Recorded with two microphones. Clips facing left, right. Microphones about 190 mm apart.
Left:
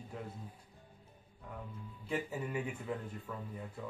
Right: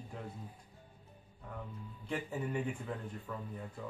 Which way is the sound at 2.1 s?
5° left (ahead or behind).